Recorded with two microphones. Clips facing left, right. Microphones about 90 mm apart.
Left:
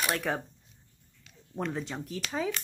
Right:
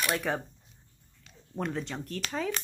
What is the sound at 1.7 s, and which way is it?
Speech, 5° left (ahead or behind).